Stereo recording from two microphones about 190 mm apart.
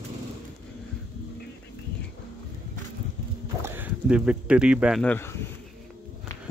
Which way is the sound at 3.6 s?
10° right (ahead or behind).